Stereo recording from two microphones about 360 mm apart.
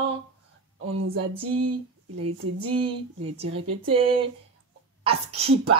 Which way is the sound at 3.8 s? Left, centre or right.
Centre.